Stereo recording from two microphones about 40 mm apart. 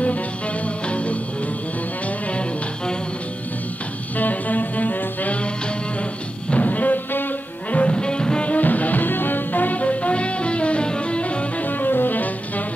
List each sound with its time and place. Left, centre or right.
0.8 s music: left
4.2 s music: left
6.5 s music: left
7.7 s music: left
8.5 s music: left
11.8 s music: left